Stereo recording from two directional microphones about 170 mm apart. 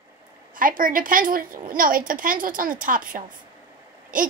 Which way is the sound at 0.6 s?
55° right (ahead or behind).